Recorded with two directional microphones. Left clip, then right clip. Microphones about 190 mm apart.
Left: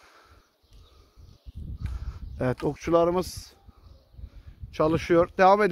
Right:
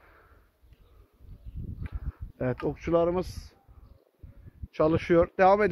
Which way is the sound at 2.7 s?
35° left (ahead or behind).